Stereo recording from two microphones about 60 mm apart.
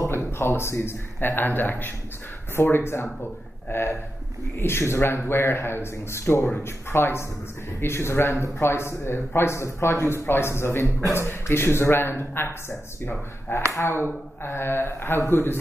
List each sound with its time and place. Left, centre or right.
0.0 s a man's voice: left